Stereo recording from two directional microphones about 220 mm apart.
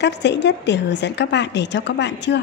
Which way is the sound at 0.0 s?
50° left (ahead or behind).